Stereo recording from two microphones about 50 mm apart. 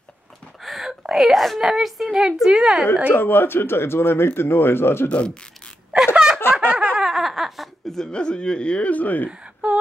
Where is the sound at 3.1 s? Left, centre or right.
Left.